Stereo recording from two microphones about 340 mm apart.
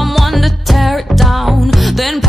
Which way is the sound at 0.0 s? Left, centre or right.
Centre.